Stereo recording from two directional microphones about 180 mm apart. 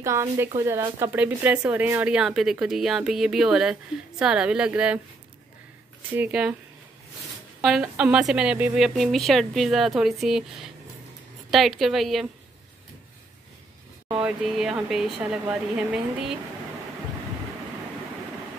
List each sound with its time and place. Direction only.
0.0 s speech: 15° right (ahead or behind)
6.1 s speech: 5° right (ahead or behind)
7.6 s speech: 5° right (ahead or behind)
14.0 s speech: 5° right (ahead or behind)